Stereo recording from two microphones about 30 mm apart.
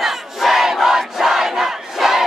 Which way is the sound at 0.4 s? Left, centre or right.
Centre.